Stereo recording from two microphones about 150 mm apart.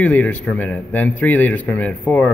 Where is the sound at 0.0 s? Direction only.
10° left (ahead or behind).